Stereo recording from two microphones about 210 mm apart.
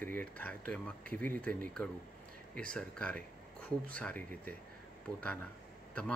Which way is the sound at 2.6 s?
5° left (ahead or behind).